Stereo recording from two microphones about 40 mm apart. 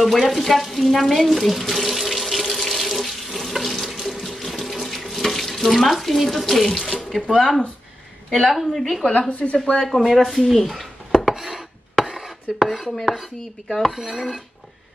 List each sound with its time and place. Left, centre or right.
0.0 s water tap: centre
7.2 s chopping: centre
9.3 s speech: left
10.0 s chopping: centre
11.1 s a sound: centre
12.5 s chopping: centre
13.9 s dishes: centre